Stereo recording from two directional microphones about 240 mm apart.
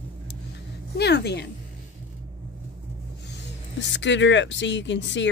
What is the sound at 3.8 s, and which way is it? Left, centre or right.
Speech, left.